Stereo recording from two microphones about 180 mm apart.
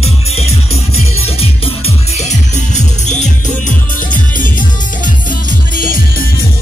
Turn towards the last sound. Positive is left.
turn(degrees=50)  # may be behind; listen again after turning